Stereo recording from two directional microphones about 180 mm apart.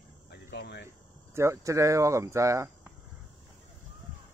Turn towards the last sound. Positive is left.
turn(degrees=-15)  # may be behind; listen again after turning